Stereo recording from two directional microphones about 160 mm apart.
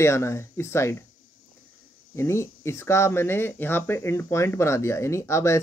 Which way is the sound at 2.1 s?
15° left (ahead or behind).